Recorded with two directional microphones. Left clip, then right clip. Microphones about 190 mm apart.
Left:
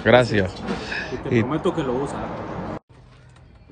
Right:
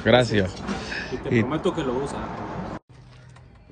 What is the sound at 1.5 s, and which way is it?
Speech, 15° left (ahead or behind).